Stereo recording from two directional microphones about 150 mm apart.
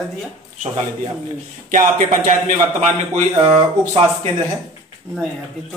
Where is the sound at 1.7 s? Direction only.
55° right (ahead or behind).